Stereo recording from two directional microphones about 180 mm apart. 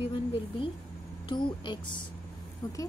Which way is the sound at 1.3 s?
25° left (ahead or behind).